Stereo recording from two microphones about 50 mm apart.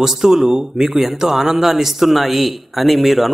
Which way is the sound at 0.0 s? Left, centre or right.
Centre.